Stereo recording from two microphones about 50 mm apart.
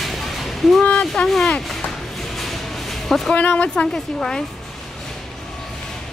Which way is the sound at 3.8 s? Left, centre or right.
Centre.